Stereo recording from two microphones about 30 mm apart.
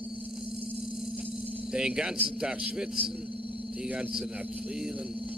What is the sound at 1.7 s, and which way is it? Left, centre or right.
Speech, right.